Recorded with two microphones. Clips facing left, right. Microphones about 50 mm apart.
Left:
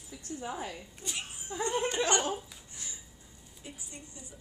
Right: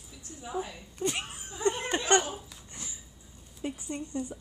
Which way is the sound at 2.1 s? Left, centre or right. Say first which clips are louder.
Right 7 dB; right.